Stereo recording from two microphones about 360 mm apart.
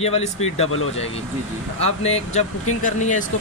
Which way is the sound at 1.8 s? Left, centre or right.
Centre.